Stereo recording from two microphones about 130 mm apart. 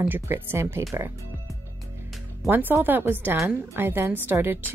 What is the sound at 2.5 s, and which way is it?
A woman's voice, 15° right (ahead or behind).